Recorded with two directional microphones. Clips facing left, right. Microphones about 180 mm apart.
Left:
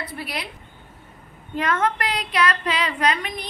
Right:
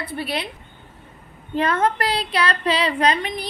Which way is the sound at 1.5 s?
30° right (ahead or behind).